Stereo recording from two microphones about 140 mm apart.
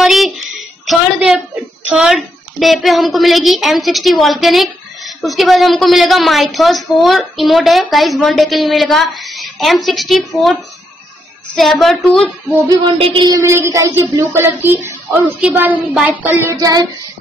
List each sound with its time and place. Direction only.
0.0 s a sound: centre (ahead or behind)
1.9 s a child's voice: 5° right (ahead or behind)
12.6 s music: 35° right (ahead or behind)
13.4 s child singing: 20° right (ahead or behind)
16.5 s child singing: 25° right (ahead or behind)